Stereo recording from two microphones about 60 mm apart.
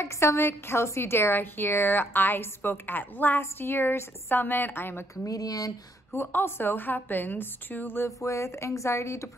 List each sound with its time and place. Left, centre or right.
0.0 s a woman's voice: left
5.1 s speech: left
6.1 s a woman's voice: left
8.2 s speech: left